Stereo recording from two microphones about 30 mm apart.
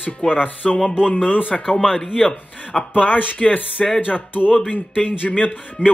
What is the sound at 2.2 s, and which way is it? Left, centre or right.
A man's voice, left.